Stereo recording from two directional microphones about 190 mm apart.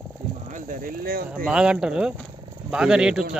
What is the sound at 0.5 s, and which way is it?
Speech, 45° right (ahead or behind).